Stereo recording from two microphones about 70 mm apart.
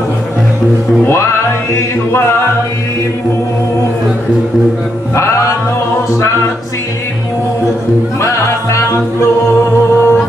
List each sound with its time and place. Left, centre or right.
1.0 s music: left
5.1 s music: left
8.2 s music: left